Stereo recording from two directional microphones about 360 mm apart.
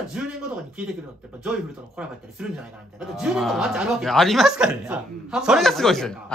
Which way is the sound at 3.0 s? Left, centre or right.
Centre.